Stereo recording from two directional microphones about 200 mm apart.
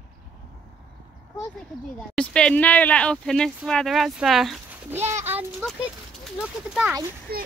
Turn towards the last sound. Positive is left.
turn(degrees=-50)  # may be behind; listen again after turning